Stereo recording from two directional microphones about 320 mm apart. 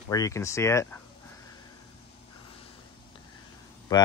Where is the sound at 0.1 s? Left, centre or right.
Centre.